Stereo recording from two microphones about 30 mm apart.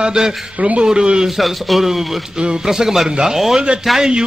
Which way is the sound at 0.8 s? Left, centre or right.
Right.